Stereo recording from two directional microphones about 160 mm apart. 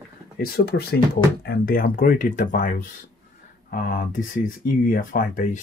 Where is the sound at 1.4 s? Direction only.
65° left (ahead or behind).